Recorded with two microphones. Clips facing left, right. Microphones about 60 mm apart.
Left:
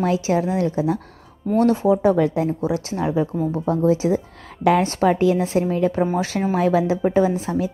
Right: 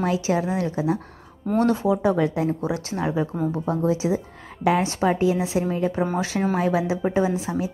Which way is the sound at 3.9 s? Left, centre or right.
Left.